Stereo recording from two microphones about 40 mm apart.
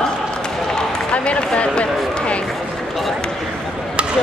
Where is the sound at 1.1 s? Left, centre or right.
Left.